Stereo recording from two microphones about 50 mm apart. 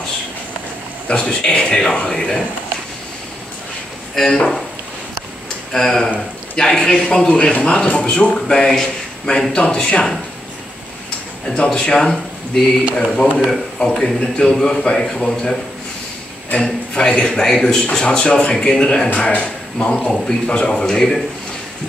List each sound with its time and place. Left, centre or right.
1.0 s a man's voice: centre
4.1 s speech: centre
5.7 s a man's voice: centre
11.5 s a man's voice: centre
16.9 s a man's voice: left
20.1 s a man's voice: centre